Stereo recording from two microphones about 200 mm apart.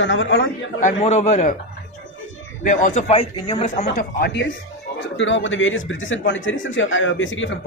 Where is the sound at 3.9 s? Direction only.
55° left (ahead or behind).